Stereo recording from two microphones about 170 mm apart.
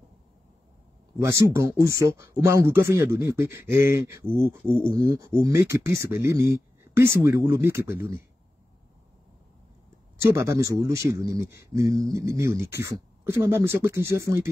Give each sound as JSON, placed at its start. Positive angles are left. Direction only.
{"t": 1.2, "sound": "a man's voice", "side_deg": -15}
{"t": 10.2, "sound": "a man's voice", "side_deg": -15}